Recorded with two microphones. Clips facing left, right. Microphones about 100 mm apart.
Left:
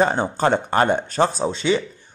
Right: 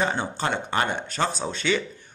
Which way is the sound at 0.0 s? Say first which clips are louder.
Left 7 dB; 40° left (ahead or behind).